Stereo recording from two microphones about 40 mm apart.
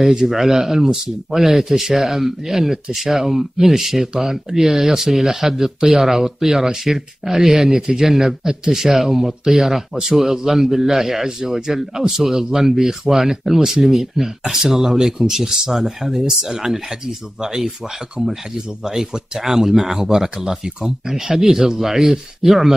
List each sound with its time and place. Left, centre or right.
0.1 s speech: centre